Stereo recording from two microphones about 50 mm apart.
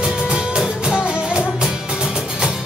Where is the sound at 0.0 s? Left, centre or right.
Centre.